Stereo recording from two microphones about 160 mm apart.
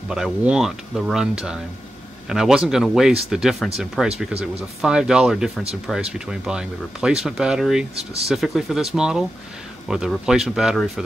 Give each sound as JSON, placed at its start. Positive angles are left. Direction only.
{"t": 0.1, "sound": "speech", "side_deg": -5}
{"t": 7.9, "sound": "speech", "side_deg": -40}
{"t": 8.3, "sound": "speech", "side_deg": 0}